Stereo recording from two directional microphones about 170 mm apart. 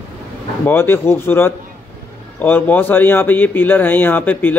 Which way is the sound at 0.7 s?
15° left (ahead or behind).